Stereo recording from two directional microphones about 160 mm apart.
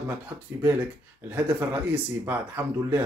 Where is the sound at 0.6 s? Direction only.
15° right (ahead or behind).